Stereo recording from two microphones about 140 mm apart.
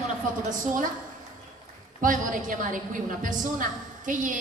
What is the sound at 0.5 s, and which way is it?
Speech, 70° right (ahead or behind).